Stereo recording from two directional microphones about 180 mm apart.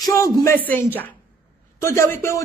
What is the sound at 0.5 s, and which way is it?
A woman's voice, 10° left (ahead or behind).